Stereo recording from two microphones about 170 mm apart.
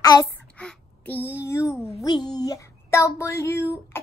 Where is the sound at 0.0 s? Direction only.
25° left (ahead or behind).